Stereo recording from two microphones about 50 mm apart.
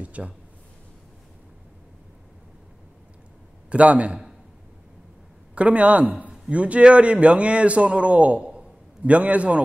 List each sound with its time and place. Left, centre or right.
0.0 s a man's voice: right
3.7 s a man's voice: right
5.5 s a man's voice: right